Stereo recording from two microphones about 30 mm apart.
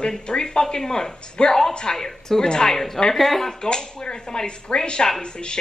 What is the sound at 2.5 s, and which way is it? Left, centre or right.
Speech, left.